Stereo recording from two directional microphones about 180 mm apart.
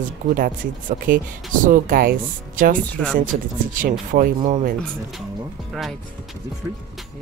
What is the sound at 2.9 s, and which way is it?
Speech, 5° left (ahead or behind).